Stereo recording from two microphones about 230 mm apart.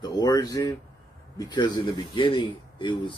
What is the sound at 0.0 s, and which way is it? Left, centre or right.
Speech, centre.